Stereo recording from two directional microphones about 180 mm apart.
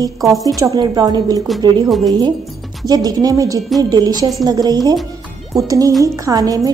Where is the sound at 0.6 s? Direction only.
20° right (ahead or behind).